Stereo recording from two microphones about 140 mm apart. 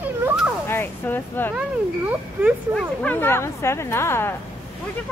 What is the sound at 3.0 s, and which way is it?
Speech, 15° left (ahead or behind).